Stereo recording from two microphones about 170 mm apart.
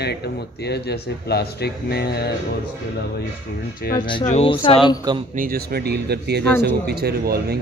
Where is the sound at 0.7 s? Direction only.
75° left (ahead or behind).